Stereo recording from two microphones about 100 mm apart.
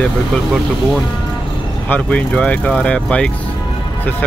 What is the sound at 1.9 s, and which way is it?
Speech, 15° left (ahead or behind).